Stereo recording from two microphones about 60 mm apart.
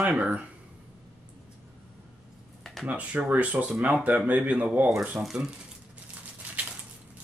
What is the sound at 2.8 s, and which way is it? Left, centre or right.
A man's voice, right.